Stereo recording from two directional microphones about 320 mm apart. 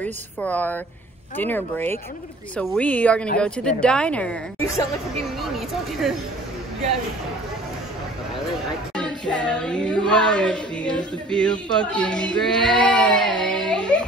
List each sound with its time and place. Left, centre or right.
0.0 s music: centre
8.9 s music: centre